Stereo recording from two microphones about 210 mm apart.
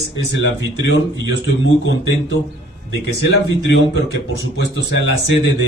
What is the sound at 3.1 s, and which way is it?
Speech, 55° left (ahead or behind).